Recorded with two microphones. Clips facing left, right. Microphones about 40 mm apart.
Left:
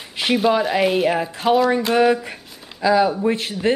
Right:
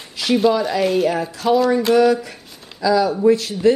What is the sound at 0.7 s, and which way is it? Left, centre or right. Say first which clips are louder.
Speech: even; left.